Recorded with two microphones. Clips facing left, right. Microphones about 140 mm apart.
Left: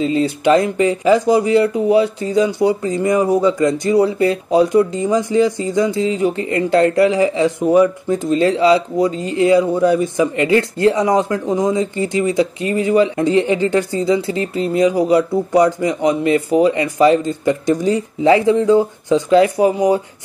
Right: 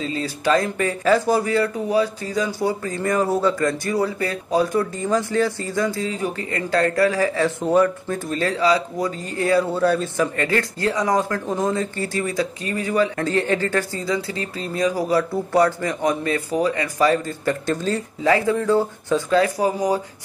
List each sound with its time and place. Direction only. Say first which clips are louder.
0.0 s speech: left 8 dB; 25° left (ahead or behind)